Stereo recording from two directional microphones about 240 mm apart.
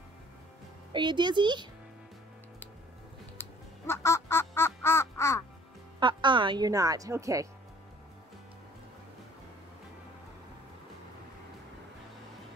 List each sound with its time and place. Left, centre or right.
0.9 s speech: centre
3.3 s duck: centre
5.9 s speech: centre